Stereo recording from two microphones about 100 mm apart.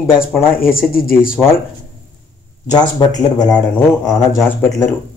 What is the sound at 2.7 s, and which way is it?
Speech, 45° left (ahead or behind).